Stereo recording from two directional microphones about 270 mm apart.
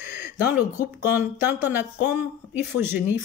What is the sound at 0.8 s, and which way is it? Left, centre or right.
Speech, centre.